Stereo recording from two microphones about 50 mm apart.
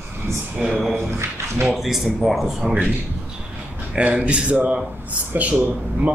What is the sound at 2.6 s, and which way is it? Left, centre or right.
Speech, centre.